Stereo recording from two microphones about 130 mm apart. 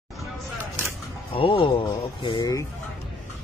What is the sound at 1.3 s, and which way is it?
Speech, 45° left (ahead or behind).